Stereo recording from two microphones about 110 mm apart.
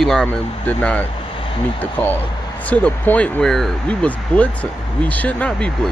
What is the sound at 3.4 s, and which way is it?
Speech, 5° left (ahead or behind).